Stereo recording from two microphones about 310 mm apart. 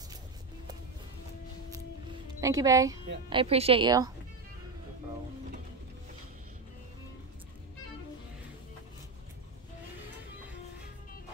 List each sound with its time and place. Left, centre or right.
2.4 s speech: centre